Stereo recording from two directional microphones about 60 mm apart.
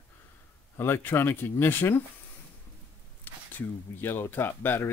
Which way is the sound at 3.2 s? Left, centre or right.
Left.